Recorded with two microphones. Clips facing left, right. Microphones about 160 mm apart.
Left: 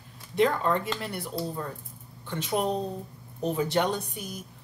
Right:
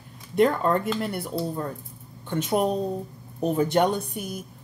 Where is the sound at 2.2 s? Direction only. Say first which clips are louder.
Right 4 dB; 50° right (ahead or behind).